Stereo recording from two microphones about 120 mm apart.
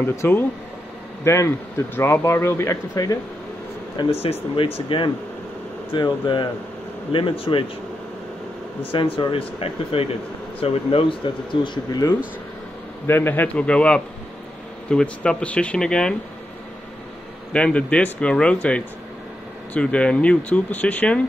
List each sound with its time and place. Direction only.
0.0 s speech: 20° left (ahead or behind)
4.2 s speech: 55° left (ahead or behind)
4.8 s speech: 45° left (ahead or behind)
8.9 s speech: 45° left (ahead or behind)
11.6 s speech: 40° left (ahead or behind)
13.0 s speech: 20° left (ahead or behind)
17.5 s speech: 10° left (ahead or behind)